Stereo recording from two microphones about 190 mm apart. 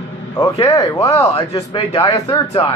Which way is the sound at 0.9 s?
30° left (ahead or behind).